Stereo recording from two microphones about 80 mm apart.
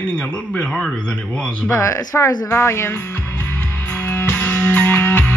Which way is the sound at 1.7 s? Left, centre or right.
Left.